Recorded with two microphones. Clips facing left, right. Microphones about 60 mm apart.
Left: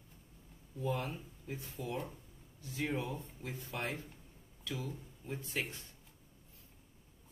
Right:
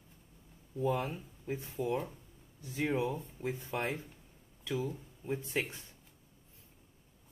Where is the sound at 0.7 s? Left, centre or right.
Centre.